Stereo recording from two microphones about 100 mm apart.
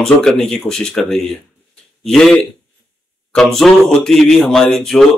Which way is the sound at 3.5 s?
Centre (ahead or behind).